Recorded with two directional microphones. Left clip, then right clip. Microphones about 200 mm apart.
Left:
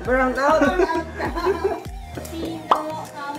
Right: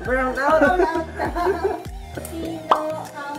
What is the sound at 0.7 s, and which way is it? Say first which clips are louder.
Music: right 1 dB; 25° left (ahead or behind).